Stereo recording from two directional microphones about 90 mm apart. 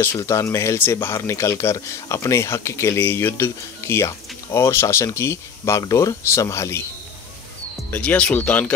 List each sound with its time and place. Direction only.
0.2 s speech: 35° left (ahead or behind)
8.0 s speech: 10° left (ahead or behind)